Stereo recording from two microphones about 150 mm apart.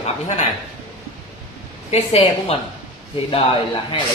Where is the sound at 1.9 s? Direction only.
40° left (ahead or behind).